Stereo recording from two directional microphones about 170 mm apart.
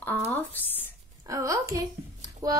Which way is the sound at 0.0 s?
10° left (ahead or behind).